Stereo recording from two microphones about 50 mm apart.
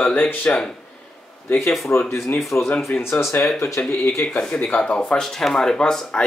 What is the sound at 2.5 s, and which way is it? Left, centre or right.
Speech, left.